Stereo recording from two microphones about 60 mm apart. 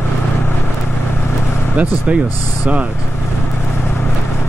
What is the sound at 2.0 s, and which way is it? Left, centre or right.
Speech, right.